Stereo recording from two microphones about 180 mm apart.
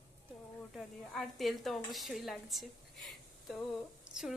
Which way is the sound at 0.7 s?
Centre (ahead or behind).